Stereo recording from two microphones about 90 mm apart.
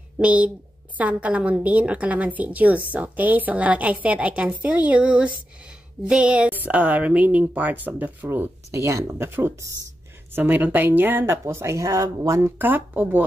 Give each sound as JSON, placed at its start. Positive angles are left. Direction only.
{"t": 0.2, "sound": "a woman's voice", "side_deg": -15}
{"t": 12.4, "sound": "speech", "side_deg": -20}